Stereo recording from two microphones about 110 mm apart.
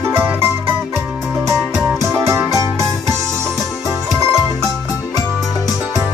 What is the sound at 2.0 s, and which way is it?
Music, 25° right (ahead or behind).